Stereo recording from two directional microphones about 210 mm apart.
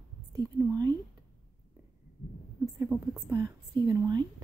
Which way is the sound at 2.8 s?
10° right (ahead or behind).